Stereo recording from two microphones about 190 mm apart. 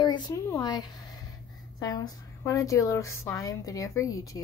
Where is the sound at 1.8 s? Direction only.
20° left (ahead or behind).